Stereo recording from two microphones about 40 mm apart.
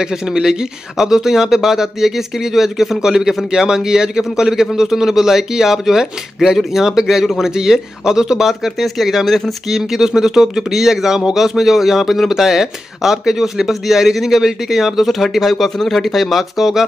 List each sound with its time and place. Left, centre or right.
0.0 s speech: centre
7.5 s speech: centre
8.5 s speech: centre
9.7 s speech: centre